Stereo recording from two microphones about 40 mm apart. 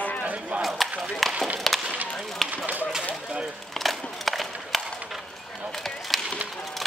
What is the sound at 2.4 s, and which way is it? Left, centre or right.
Speech, right.